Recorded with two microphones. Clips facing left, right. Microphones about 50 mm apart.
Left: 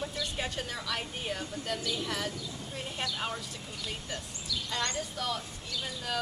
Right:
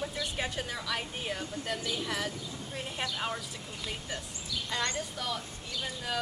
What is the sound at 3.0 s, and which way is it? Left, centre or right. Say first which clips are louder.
Speech: even; right.